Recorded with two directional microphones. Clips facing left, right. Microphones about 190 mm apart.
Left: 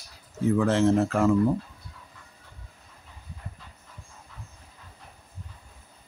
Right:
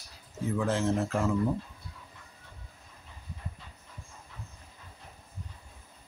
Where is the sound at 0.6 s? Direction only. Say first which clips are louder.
Left 6 dB; 85° left.